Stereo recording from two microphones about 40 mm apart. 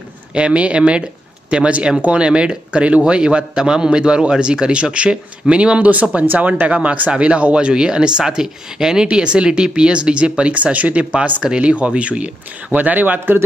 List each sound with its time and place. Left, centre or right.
0.3 s speech: right
5.8 s speech: right